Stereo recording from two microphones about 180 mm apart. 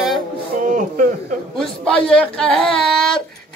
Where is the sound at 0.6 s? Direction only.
45° right (ahead or behind).